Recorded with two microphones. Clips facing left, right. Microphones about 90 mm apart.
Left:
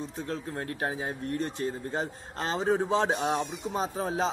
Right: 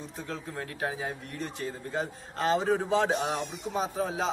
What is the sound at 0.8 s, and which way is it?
A man's voice, 35° left (ahead or behind).